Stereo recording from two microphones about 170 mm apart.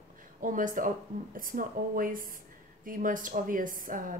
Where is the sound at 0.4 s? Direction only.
50° right (ahead or behind).